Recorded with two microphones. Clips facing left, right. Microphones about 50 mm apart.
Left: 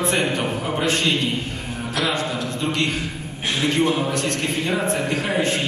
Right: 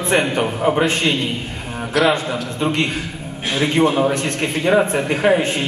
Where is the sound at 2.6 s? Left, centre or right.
Right.